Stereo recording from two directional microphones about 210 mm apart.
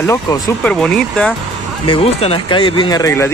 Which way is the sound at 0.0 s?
15° left (ahead or behind).